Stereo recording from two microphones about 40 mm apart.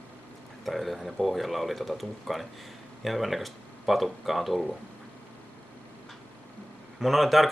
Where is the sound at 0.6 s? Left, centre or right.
Centre.